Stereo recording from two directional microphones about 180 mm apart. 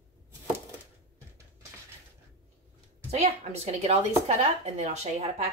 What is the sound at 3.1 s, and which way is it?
A woman's voice, 35° right (ahead or behind).